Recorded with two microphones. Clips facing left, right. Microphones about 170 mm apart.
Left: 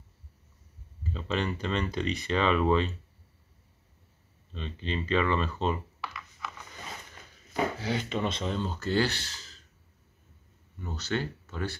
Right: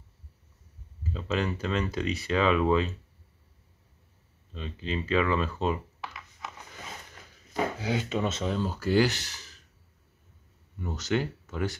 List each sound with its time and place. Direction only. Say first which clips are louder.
1.1 s speech: right 1 dB; 5° right (ahead or behind)
4.5 s speech: right 1 dB; 5° right (ahead or behind)
7.8 s speech: right 2 dB; 10° right (ahead or behind)
10.8 s speech: right 3 dB; 15° right (ahead or behind)